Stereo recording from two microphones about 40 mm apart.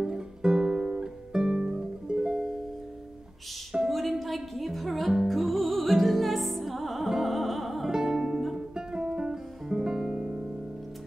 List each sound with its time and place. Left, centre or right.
0.0 s music: centre
3.9 s music: centre